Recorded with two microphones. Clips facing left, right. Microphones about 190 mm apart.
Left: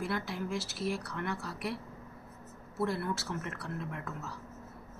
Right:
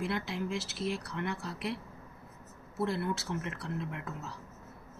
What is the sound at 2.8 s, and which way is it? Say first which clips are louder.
Speech: right 1 dB; 20° right (ahead or behind).